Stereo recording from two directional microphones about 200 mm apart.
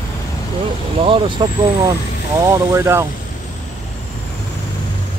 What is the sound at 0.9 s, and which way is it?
Speech, 25° right (ahead or behind).